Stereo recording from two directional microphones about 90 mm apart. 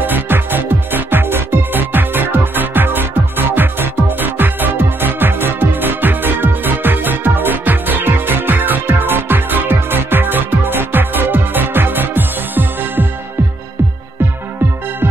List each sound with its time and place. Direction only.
0.0 s music: 20° right (ahead or behind)